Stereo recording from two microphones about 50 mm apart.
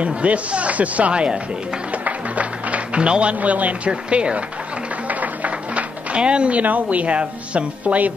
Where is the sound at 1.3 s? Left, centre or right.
Right.